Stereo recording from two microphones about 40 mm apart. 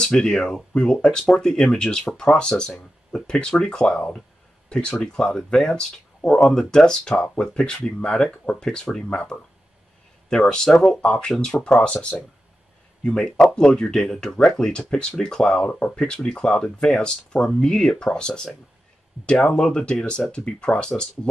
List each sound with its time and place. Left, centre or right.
0.0 s speech: left
8.6 s speech: centre
9.1 s speech: centre
15.7 s speech: left
16.2 s speech: centre